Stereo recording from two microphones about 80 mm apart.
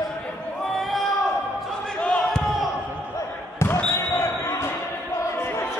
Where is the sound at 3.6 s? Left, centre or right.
Left.